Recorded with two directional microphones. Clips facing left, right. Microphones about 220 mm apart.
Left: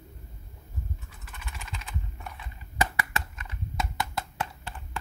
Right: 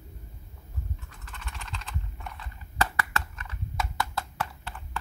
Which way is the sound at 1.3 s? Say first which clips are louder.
Even; 5° left (ahead or behind).